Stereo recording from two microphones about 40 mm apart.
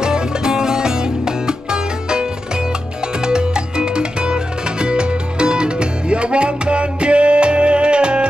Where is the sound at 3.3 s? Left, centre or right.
Right.